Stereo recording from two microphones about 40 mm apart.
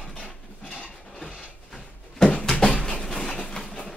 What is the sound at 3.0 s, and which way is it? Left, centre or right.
Train, centre.